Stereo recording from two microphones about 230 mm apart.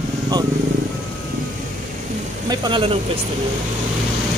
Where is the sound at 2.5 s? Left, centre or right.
Centre.